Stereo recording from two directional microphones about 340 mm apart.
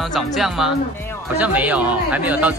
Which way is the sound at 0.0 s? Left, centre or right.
Centre.